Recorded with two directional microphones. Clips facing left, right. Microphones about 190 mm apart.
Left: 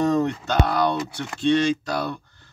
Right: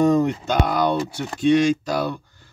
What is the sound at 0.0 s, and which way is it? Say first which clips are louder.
Speech: right 3 dB; 10° right (ahead or behind).